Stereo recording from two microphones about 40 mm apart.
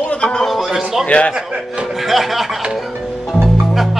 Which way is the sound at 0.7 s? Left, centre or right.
Centre.